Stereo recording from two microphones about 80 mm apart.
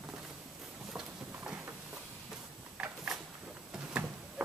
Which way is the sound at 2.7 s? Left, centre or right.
Centre.